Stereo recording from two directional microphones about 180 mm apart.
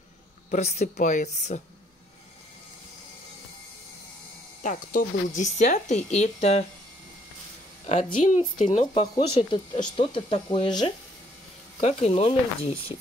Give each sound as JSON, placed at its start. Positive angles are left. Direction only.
{"t": 0.5, "sound": "speech", "side_deg": 40}
{"t": 4.6, "sound": "speech", "side_deg": 45}
{"t": 7.8, "sound": "speech", "side_deg": 40}